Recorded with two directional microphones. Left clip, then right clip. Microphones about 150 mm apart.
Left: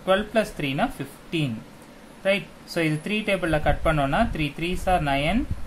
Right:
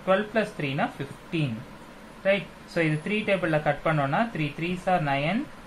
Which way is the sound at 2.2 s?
25° left (ahead or behind).